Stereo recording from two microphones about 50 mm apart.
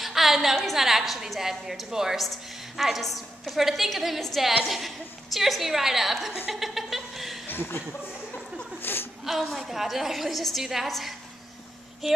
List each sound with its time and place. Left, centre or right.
0.0 s a sound: centre
0.7 s a woman's voice: centre
6.5 s chuckle: centre
7.4 s a sound: left
8.7 s chuckle: left
9.2 s a woman's voice: centre